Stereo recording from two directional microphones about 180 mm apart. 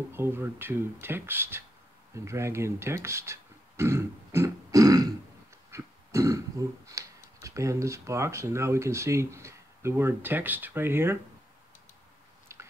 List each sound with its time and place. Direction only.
0.1 s speech: 15° right (ahead or behind)
5.7 s throat clearing: 15° right (ahead or behind)
7.4 s speech: 15° right (ahead or behind)
12.5 s chewing: 15° right (ahead or behind)